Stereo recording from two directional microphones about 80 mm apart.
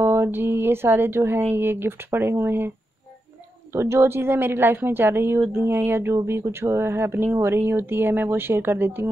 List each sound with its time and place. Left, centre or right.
0.0 s speech: right
3.7 s speech: right